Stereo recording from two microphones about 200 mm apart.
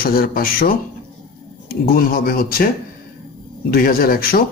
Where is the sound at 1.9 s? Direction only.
45° left (ahead or behind).